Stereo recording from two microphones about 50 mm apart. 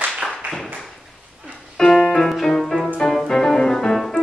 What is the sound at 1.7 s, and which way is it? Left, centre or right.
Music, centre.